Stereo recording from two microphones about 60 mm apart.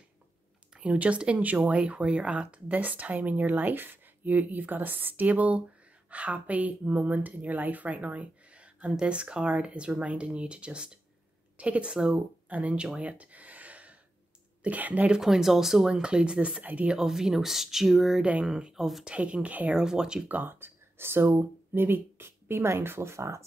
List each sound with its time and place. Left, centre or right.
0.7 s speech: right
12.4 s speech: right
15.0 s speech: centre; by 16.9 s right
16.9 s speech: centre
19.0 s speech: centre
19.7 s speech: centre
20.2 s speech: right